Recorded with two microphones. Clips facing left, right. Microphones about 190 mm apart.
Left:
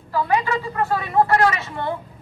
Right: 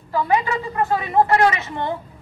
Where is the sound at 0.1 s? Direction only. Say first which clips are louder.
Right 1 dB; 20° right (ahead or behind).